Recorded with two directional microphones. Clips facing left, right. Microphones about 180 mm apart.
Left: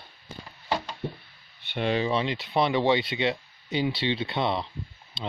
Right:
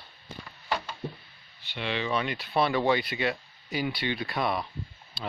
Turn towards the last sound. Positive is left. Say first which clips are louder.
# left 2 dB
turn(degrees=20)  # may be behind; listen again after turning